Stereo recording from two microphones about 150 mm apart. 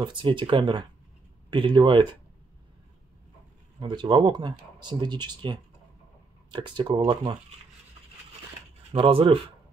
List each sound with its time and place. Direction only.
0.0 s speech: 30° right (ahead or behind)
3.8 s speech: 30° right (ahead or behind)
8.9 s speech: 35° right (ahead or behind)